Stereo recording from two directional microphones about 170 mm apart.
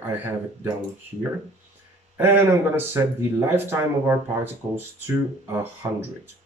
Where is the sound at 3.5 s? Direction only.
15° right (ahead or behind).